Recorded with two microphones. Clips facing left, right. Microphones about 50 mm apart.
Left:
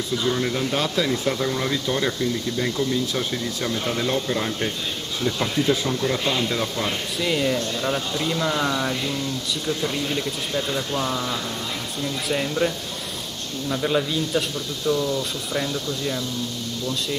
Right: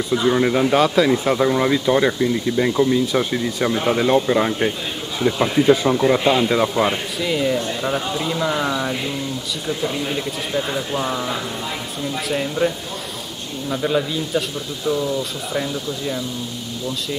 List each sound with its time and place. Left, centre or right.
0.1 s speech: right
7.2 s speech: centre
12.0 s speech: centre
14.9 s speech: centre